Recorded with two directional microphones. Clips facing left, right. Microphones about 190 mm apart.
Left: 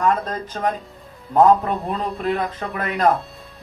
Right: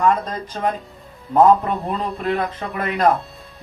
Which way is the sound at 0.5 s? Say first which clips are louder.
Right 2 dB; centre (ahead or behind).